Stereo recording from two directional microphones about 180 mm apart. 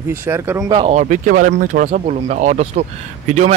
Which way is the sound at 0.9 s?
45° right (ahead or behind).